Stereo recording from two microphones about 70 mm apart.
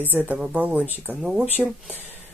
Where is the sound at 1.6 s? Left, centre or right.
Centre.